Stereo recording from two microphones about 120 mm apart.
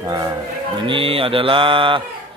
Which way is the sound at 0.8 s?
50° right (ahead or behind).